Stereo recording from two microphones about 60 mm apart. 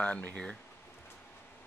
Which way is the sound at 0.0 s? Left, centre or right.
Left.